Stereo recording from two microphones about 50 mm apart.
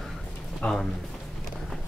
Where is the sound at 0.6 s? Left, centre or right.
Centre.